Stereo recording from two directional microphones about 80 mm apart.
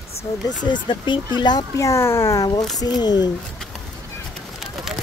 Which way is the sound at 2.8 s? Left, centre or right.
Left.